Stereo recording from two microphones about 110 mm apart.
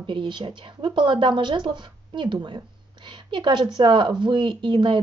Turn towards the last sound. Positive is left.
turn(degrees=-45)  # may be behind; listen again after turning